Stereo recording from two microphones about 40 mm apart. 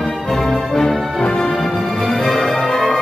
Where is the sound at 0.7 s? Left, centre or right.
Centre.